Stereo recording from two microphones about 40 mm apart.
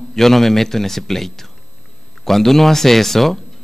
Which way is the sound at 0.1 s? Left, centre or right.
Centre.